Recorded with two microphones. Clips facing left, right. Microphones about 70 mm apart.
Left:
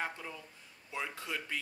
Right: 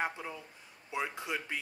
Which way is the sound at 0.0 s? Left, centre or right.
Centre.